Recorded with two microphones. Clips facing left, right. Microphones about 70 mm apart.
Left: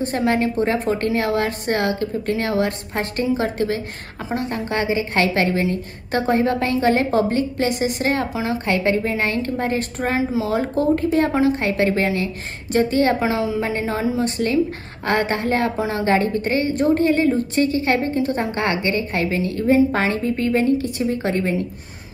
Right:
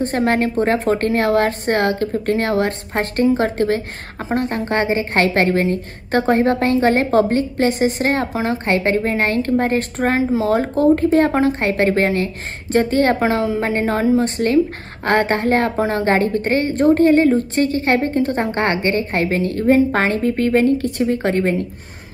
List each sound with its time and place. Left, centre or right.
0.0 s a woman's voice: right